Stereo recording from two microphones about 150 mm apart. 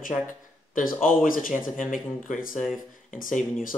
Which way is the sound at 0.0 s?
60° left (ahead or behind).